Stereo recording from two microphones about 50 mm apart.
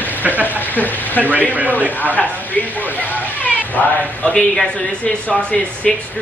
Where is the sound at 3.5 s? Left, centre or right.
Left.